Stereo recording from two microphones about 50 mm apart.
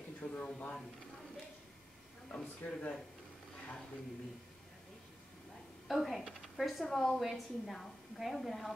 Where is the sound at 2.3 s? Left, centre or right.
Centre.